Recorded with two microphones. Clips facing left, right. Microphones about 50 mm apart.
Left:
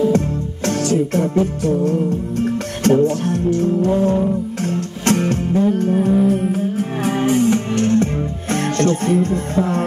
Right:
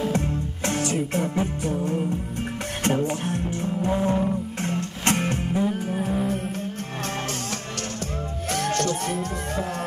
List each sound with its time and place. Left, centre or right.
0.7 s music: right
5.9 s music: centre; by 9.8 s left